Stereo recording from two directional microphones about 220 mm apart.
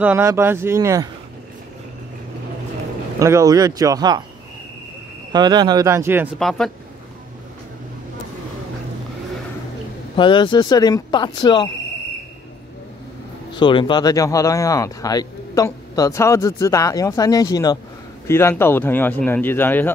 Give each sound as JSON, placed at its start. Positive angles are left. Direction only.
{"t": 0.0, "sound": "speech", "side_deg": -10}
{"t": 3.2, "sound": "speech", "side_deg": -15}
{"t": 5.3, "sound": "speech", "side_deg": -20}
{"t": 6.3, "sound": "speech", "side_deg": 0}
{"t": 10.1, "sound": "speech", "side_deg": 20}
{"t": 13.6, "sound": "speech", "side_deg": 20}